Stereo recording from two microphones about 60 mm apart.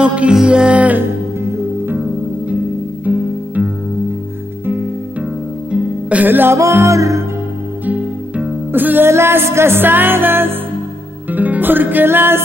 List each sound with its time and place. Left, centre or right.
0.0 s music: centre
3.1 s music: right
5.7 s music: right
6.2 s music: right
6.5 s music: right
7.8 s music: right
8.7 s music: right
9.1 s music: right
11.2 s music: right